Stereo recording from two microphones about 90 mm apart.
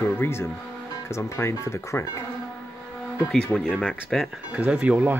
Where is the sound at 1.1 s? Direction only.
35° left (ahead or behind).